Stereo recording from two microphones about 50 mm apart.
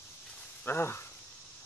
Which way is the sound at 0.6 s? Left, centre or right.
Left.